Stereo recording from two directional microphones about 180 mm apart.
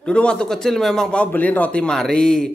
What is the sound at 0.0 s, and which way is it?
A man's voice, 5° left (ahead or behind).